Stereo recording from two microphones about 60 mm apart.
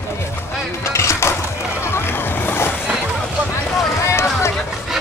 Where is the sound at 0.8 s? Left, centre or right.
Left.